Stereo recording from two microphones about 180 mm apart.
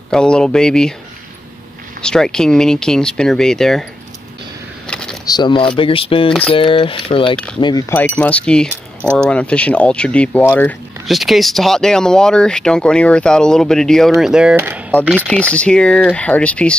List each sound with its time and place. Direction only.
0.1 s speech: 5° left (ahead or behind)
2.0 s speech: 5° left (ahead or behind)
4.8 s a sound: 5° left (ahead or behind)
5.2 s mechanisms: 25° left (ahead or behind)
8.2 s speech: 5° left (ahead or behind); by 15.0 s 10° right (ahead or behind)
15.1 s speech: 5° left (ahead or behind)